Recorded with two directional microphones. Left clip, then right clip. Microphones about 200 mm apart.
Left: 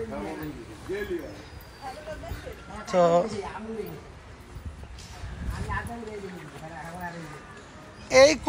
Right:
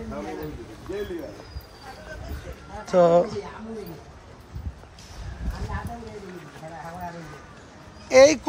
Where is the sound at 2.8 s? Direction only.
35° right (ahead or behind).